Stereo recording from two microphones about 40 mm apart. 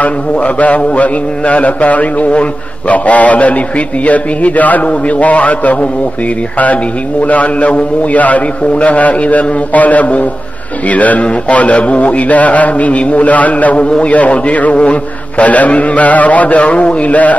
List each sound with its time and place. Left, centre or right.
0.0 s a man's voice: left
7.2 s a man's voice: left